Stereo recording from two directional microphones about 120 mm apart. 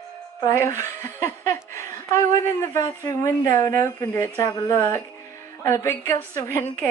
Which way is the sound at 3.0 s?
25° left (ahead or behind).